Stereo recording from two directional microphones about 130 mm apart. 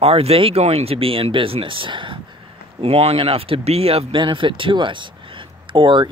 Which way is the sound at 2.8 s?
50° right (ahead or behind).